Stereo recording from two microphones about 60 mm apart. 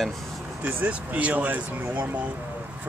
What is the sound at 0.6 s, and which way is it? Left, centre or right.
Speech, right.